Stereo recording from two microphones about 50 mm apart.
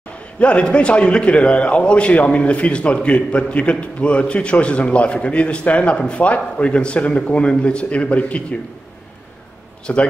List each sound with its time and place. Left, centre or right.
0.4 s a man's voice: left
9.9 s a man's voice: left